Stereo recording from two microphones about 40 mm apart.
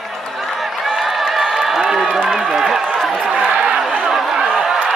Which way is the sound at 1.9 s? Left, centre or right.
Centre.